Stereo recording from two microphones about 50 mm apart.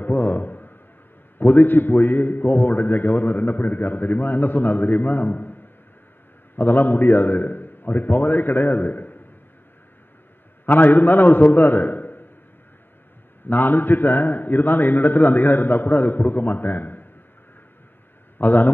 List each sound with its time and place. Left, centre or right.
0.2 s a man's voice: left
6.7 s a man's voice: left
10.6 s a man's voice: left
13.4 s a man's voice: left
18.4 s a man's voice: left